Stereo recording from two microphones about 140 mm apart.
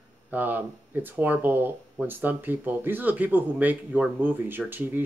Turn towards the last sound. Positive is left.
turn(degrees=-15)  # may be behind; listen again after turning